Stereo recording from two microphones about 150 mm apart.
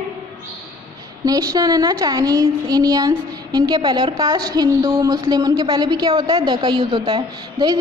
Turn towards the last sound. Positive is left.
turn(degrees=-30)  # may be behind; listen again after turning